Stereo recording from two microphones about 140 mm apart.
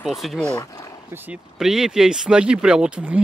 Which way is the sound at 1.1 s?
10° right (ahead or behind).